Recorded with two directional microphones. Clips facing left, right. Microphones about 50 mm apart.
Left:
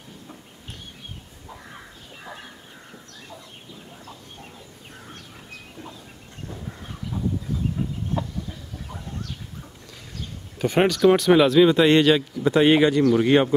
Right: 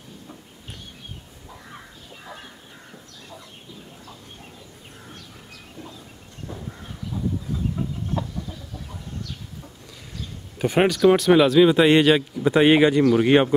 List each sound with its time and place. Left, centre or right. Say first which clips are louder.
7.8 s chicken: even; centre
10.6 s speech: right 1 dB; centre